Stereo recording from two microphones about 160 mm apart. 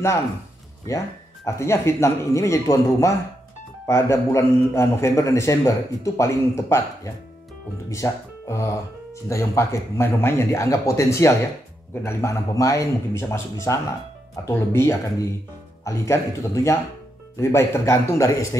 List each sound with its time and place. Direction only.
0.8 s a man's voice: 20° left (ahead or behind)
7.9 s a man's voice: 20° left (ahead or behind)